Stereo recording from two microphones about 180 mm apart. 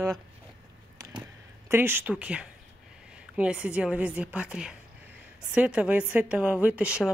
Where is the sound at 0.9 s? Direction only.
20° right (ahead or behind).